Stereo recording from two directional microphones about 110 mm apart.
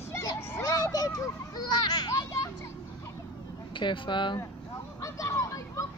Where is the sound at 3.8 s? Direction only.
45° left (ahead or behind).